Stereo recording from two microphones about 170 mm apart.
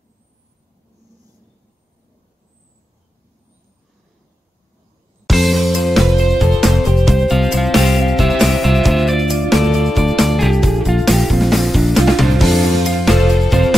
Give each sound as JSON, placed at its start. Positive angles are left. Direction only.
{"t": 5.2, "sound": "music", "side_deg": 0}